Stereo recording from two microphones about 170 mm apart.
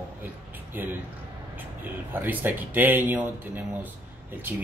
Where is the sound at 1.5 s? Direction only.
10° right (ahead or behind).